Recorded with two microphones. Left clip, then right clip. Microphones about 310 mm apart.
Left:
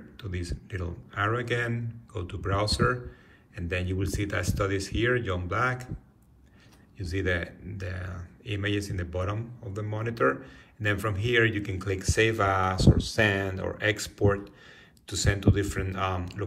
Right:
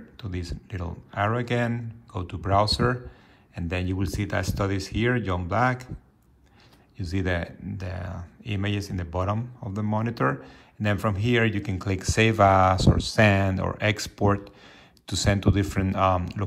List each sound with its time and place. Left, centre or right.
0.2 s speech: centre
7.0 s speech: centre